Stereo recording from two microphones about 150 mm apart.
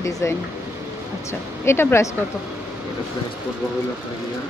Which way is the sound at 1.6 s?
15° left (ahead or behind).